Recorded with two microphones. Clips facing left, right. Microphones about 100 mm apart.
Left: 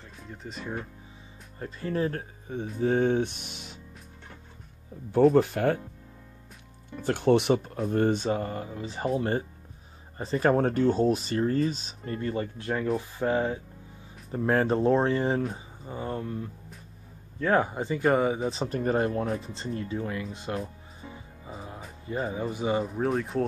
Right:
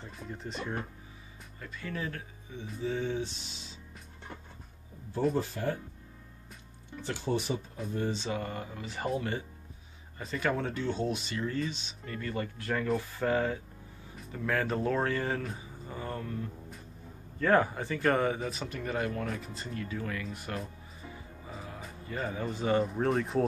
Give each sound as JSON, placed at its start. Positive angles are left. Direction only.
{"t": 0.3, "sound": "speech", "side_deg": 0}
{"t": 1.6, "sound": "speech", "side_deg": 35}
{"t": 5.1, "sound": "speech", "side_deg": 65}
{"t": 7.0, "sound": "speech", "side_deg": 55}
{"t": 8.3, "sound": "speech", "side_deg": 35}
{"t": 14.3, "sound": "speech", "side_deg": 35}
{"t": 17.4, "sound": "speech", "side_deg": 15}
{"t": 18.5, "sound": "speech", "side_deg": 35}
{"t": 21.5, "sound": "music", "side_deg": 30}
{"t": 22.0, "sound": "speech", "side_deg": 20}
{"t": 22.8, "sound": "speech", "side_deg": 0}